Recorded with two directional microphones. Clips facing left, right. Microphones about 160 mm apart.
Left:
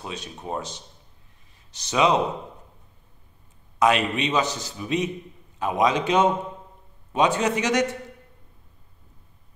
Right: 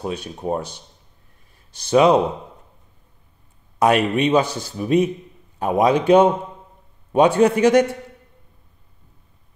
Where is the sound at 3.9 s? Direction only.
55° right (ahead or behind).